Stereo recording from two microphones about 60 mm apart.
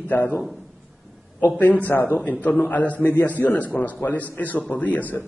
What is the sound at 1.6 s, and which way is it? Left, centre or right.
A man's voice, left.